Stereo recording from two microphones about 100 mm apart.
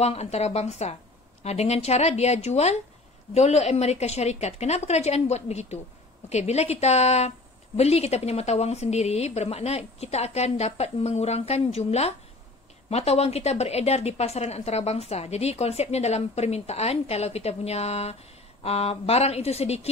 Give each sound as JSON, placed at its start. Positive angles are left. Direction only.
{"t": 0.0, "sound": "a woman's voice", "side_deg": 90}